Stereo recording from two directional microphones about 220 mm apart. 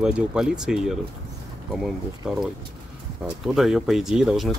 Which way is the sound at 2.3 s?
Centre (ahead or behind).